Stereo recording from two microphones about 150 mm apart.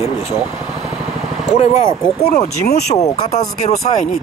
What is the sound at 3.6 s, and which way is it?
Speech, 50° left (ahead or behind).